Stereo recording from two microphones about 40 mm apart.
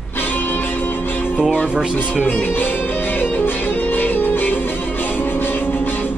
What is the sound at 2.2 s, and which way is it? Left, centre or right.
Music, left.